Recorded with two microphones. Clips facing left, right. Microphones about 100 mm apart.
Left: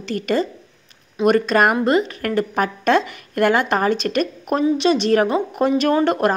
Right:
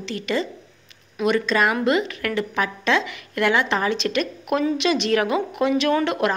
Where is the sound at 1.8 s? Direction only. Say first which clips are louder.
Left 3 dB; 40° left (ahead or behind).